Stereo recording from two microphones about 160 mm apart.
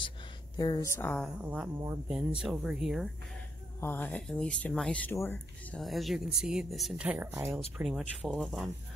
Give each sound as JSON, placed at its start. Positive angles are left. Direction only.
{"t": 0.6, "sound": "speech", "side_deg": 25}
{"t": 1.4, "sound": "speech", "side_deg": -10}
{"t": 3.8, "sound": "speech", "side_deg": 10}
{"t": 5.8, "sound": "speech", "side_deg": 0}
{"t": 7.7, "sound": "speech", "side_deg": 0}